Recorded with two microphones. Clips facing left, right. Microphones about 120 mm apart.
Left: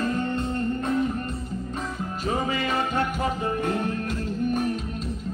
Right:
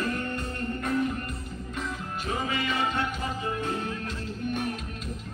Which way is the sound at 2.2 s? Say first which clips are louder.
Left 4 dB; 40° left (ahead or behind).